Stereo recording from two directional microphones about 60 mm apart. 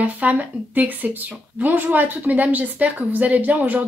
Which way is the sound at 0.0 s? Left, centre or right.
Right.